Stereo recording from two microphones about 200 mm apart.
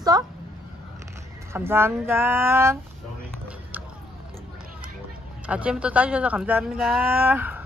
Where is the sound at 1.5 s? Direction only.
10° right (ahead or behind).